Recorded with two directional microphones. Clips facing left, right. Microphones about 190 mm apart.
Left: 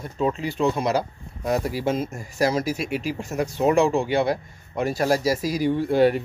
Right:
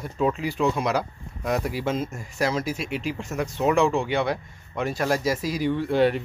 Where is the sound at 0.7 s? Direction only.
30° left (ahead or behind).